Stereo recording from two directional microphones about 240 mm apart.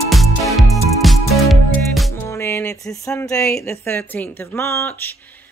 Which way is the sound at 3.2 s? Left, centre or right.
Centre.